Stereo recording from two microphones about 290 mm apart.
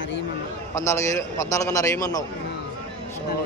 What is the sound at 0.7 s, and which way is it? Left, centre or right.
A man's voice, centre.